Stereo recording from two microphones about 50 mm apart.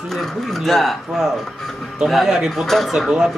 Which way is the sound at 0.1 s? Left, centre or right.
Centre.